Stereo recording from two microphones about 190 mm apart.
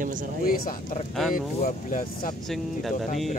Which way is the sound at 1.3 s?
45° left (ahead or behind).